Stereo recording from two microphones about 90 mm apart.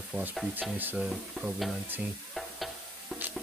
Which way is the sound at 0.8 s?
20° right (ahead or behind).